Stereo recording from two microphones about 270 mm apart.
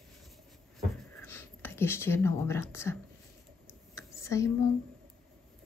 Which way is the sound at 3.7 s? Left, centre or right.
Centre.